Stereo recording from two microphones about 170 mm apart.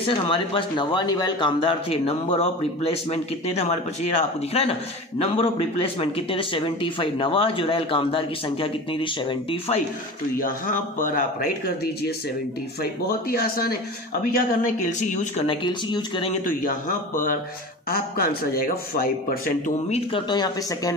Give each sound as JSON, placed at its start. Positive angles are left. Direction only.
{"t": 0.0, "sound": "speech", "side_deg": 30}
{"t": 10.3, "sound": "a man's voice", "side_deg": 55}
{"t": 13.3, "sound": "a man's voice", "side_deg": 65}
{"t": 14.6, "sound": "a man's voice", "side_deg": 50}
{"t": 15.4, "sound": "speech", "side_deg": 30}
{"t": 16.4, "sound": "a man's voice", "side_deg": 50}
{"t": 19.9, "sound": "speech", "side_deg": 30}